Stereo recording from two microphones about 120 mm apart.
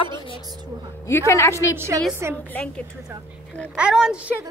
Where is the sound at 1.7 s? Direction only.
20° right (ahead or behind).